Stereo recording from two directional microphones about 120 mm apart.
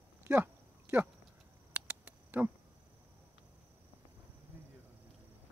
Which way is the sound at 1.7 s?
10° right (ahead or behind).